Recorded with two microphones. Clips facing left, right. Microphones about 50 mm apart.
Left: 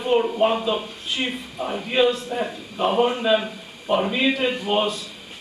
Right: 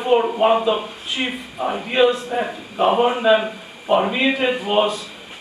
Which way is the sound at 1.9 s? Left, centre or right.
Centre.